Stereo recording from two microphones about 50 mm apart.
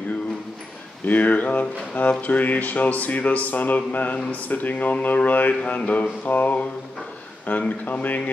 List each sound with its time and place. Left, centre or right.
1.0 s speech: left